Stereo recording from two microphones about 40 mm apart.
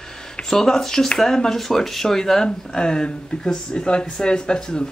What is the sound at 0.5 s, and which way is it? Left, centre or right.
Speech, centre.